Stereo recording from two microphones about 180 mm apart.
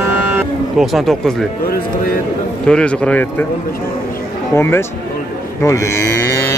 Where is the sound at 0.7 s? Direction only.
Centre (ahead or behind).